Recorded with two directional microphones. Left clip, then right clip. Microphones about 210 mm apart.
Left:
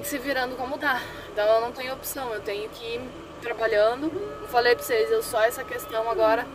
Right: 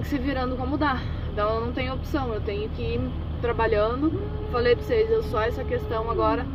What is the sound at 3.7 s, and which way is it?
A woman's voice, 10° left (ahead or behind).